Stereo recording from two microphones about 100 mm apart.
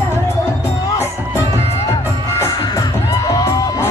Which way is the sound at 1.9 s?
30° left (ahead or behind).